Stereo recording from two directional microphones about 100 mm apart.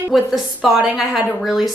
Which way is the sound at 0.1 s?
5° right (ahead or behind).